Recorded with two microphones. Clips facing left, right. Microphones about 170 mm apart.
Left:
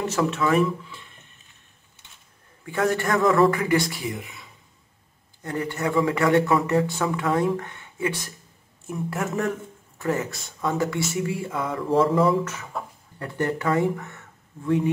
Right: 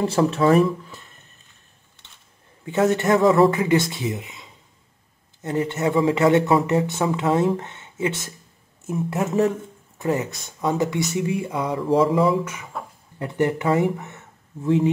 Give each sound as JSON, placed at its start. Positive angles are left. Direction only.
{"t": 0.0, "sound": "speech", "side_deg": -30}
{"t": 2.6, "sound": "speech", "side_deg": -25}
{"t": 11.8, "sound": "mantra", "side_deg": 0}
{"t": 13.2, "sound": "speech", "side_deg": -20}